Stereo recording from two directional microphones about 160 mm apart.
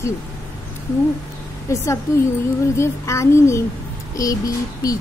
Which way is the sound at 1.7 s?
20° left (ahead or behind).